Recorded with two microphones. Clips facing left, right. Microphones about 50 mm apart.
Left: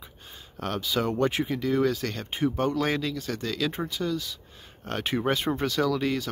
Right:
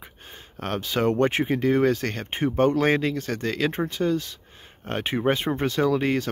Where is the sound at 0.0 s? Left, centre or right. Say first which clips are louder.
Right 3 dB; right.